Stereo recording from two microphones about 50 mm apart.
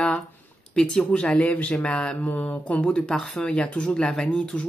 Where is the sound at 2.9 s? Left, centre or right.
Centre.